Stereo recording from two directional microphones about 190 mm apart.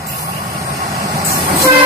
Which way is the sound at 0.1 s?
15° right (ahead or behind).